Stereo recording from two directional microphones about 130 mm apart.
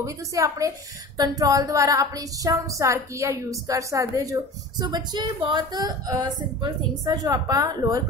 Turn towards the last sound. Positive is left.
turn(degrees=-30)  # may be behind; listen again after turning